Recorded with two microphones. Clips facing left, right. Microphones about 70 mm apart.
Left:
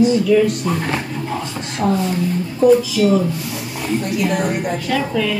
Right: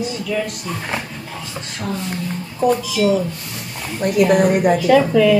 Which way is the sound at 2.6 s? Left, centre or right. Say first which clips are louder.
Left 5 dB; centre.